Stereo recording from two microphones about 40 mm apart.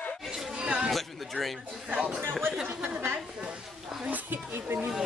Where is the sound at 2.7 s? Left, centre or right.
Right.